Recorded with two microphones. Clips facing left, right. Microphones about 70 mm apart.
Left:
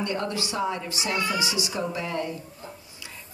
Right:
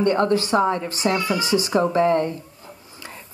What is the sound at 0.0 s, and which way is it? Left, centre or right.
Speech, right.